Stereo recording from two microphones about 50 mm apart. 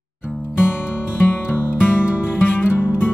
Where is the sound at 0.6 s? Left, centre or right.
Left.